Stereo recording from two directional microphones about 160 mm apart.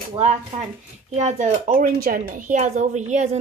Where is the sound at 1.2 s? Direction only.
45° right (ahead or behind).